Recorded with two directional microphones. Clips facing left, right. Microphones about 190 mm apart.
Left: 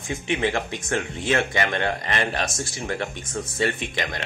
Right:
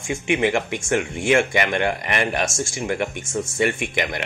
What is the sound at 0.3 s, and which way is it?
Speech, 15° right (ahead or behind).